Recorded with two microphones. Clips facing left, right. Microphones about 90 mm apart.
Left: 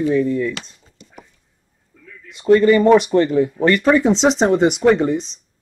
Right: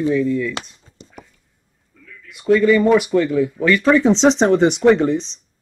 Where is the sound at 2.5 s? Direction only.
60° left (ahead or behind).